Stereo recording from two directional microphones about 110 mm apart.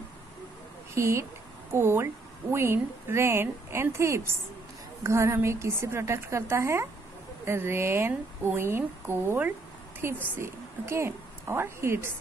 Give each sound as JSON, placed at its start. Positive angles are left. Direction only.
{"t": 0.9, "sound": "speech", "side_deg": -25}